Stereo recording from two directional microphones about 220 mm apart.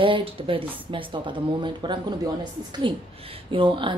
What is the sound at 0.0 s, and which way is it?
A woman's voice, 25° right (ahead or behind).